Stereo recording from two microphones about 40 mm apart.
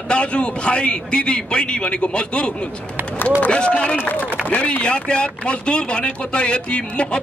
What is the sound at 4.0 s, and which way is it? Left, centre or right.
Speech, left.